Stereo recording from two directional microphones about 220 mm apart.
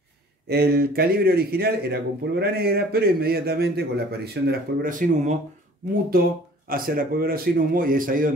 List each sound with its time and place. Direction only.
0.5 s speech: 45° right (ahead or behind)
6.7 s a man's voice: 40° right (ahead or behind)